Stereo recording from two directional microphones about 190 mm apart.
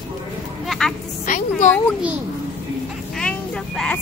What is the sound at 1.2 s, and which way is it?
Music, 45° left (ahead or behind).